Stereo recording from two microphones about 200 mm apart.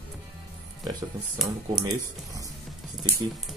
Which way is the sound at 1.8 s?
15° right (ahead or behind).